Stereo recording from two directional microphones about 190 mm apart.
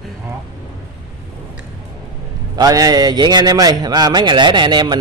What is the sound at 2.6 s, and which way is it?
A man's voice, 20° right (ahead or behind).